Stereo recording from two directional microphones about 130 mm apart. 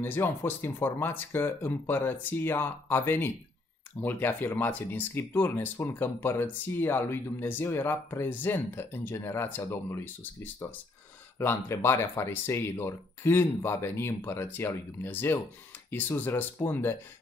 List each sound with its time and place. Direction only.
0.0 s speech: 15° left (ahead or behind)